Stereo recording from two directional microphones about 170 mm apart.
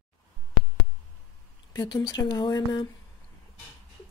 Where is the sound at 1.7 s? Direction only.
25° left (ahead or behind).